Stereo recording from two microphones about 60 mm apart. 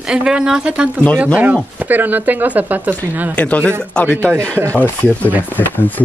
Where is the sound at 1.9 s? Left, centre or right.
Right.